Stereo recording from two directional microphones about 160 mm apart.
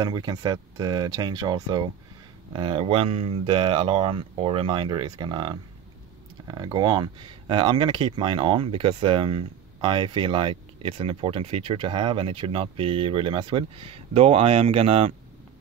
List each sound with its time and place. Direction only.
0.0 s speech: 25° right (ahead or behind)